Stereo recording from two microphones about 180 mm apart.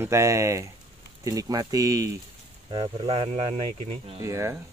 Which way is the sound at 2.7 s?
30° right (ahead or behind).